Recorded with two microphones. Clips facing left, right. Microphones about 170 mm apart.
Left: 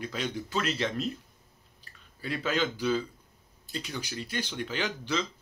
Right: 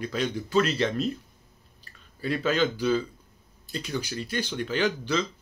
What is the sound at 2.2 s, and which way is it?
Speech, 15° left (ahead or behind).